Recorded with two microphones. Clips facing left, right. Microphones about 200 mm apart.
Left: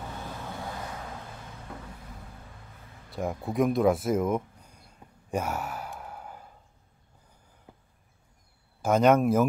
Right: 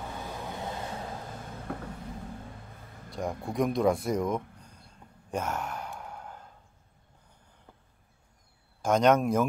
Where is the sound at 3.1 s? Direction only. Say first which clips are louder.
Left 2 dB; 5° left (ahead or behind).